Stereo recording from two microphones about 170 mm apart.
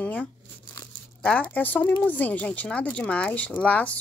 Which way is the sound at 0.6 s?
20° left (ahead or behind).